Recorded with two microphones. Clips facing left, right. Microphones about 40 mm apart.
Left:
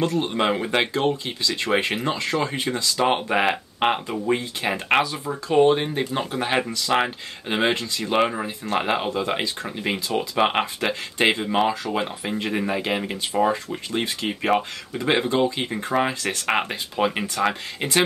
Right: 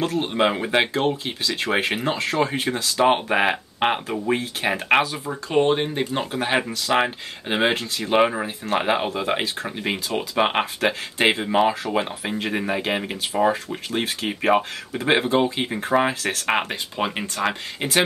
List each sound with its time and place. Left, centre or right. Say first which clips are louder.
0.0 s speech: right 1 dB; centre
2.0 s speech: right 1 dB; centre
2.3 s speech: right 2 dB; right
15.6 s speech: right 2 dB; centre